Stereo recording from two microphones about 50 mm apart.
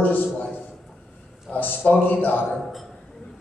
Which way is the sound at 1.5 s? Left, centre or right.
Left.